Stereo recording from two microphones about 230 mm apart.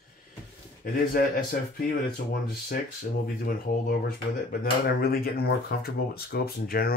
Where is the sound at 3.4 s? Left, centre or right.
Left.